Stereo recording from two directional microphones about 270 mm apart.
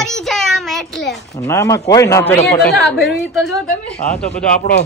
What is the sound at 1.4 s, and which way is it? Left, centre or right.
A man's voice, centre.